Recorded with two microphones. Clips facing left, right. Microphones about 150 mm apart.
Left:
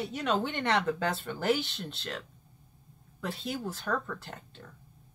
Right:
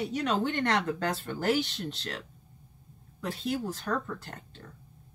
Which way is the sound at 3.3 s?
Centre (ahead or behind).